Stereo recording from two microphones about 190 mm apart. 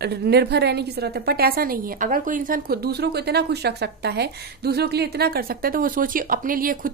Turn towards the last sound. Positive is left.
turn(degrees=-45)  # may be behind; listen again after turning